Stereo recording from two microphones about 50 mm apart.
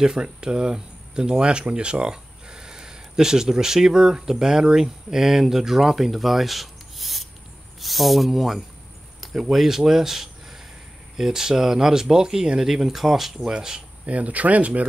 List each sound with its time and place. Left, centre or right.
0.0 s speech: centre
14.0 s speech: right